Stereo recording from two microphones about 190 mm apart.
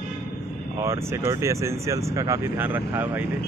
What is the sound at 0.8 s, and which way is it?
Speech, 15° right (ahead or behind).